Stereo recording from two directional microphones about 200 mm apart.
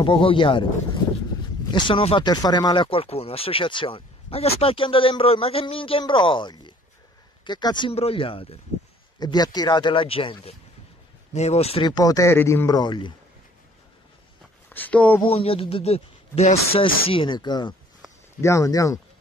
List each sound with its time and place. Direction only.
0.0 s speech: 25° left (ahead or behind)
1.7 s speech: 25° left (ahead or behind)
14.7 s speech: 10° left (ahead or behind)
15.2 s speech: 30° left (ahead or behind)